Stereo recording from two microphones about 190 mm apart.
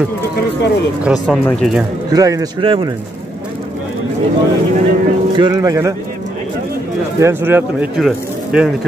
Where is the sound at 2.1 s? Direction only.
20° right (ahead or behind).